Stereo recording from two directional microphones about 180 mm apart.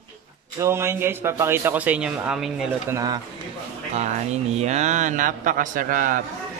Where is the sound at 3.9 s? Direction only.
40° right (ahead or behind).